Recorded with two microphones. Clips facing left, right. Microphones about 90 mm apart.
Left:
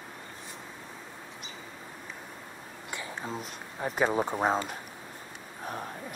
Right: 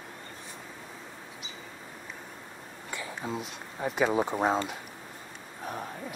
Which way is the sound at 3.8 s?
40° left (ahead or behind).